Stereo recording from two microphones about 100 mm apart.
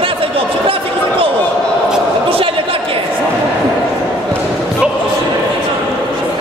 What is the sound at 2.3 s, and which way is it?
Chatter, 65° right (ahead or behind).